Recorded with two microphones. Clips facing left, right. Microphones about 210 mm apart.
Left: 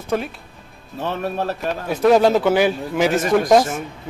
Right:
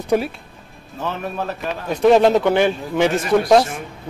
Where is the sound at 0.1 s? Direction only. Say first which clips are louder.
Right 4 dB; 10° right (ahead or behind).